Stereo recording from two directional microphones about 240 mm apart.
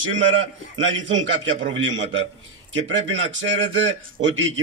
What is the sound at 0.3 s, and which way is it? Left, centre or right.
A man's voice, right.